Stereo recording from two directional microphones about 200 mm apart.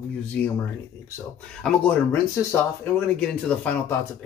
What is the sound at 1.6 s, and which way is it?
Speech, 10° left (ahead or behind).